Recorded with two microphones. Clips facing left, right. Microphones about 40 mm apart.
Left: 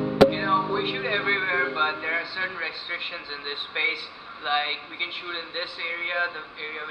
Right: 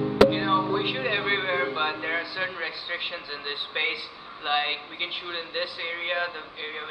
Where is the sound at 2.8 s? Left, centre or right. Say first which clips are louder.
Even; right.